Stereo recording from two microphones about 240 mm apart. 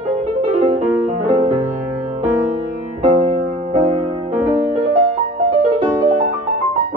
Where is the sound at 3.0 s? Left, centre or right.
Right.